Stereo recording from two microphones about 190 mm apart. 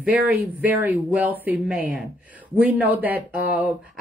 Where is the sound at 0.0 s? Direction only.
10° right (ahead or behind).